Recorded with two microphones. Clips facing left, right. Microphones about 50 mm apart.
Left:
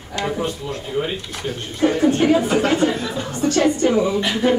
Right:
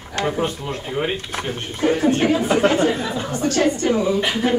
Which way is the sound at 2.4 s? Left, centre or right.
Centre.